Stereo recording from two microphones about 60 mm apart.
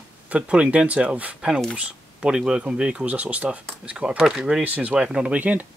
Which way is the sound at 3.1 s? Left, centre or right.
Right.